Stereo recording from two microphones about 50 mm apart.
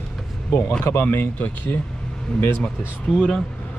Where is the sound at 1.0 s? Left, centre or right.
Left.